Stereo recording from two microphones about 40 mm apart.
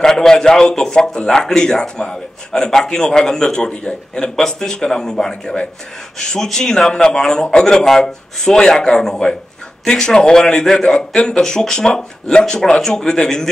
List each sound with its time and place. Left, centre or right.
0.0 s a man's voice: centre